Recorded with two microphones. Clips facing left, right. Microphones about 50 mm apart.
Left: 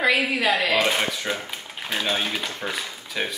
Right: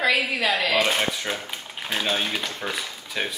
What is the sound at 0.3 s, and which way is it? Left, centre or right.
Speech, centre.